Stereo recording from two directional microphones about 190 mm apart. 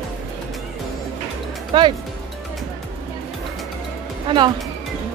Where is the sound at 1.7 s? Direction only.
25° right (ahead or behind).